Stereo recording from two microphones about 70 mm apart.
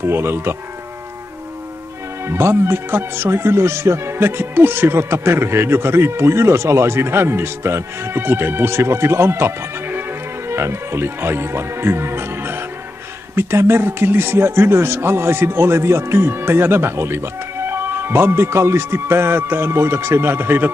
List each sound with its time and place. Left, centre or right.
0.0 s speech: right
2.2 s speech: right